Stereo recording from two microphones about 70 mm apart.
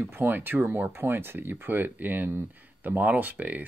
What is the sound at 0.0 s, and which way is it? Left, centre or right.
Speech, right.